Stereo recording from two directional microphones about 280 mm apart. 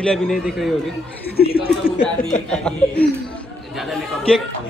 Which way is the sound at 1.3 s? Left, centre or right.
Left.